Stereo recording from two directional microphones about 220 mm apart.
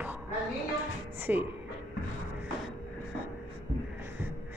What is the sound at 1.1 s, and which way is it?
Music, 10° right (ahead or behind).